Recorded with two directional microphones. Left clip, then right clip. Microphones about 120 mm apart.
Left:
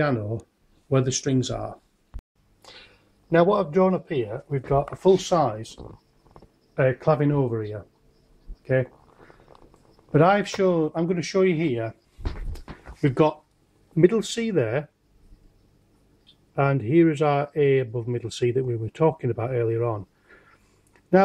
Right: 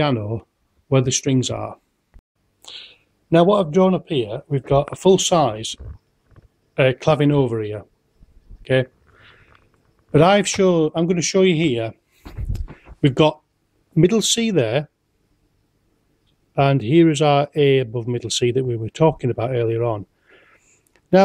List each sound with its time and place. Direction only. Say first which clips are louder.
0.0 s speech: right 4 dB; 25° right (ahead or behind)
2.6 s a sound: right 9 dB; 35° right (ahead or behind)
3.7 s speech: right 4 dB; 30° right (ahead or behind)
4.9 s speech: right 3 dB; 10° right (ahead or behind)
6.7 s a sound: right 5 dB; 25° right (ahead or behind)
7.2 s speech: right 6 dB; 25° right (ahead or behind)
10.1 s speech: right 5 dB; 30° right (ahead or behind)
12.5 s a sound: right 2 dB; 30° right (ahead or behind)
13.9 s speech: right 4 dB; 30° right (ahead or behind)
16.5 s speech: right 5 dB; 30° right (ahead or behind)